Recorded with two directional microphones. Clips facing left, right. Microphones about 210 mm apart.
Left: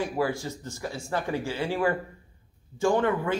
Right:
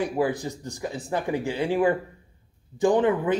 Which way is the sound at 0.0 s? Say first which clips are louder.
Right 3 dB; 15° right (ahead or behind).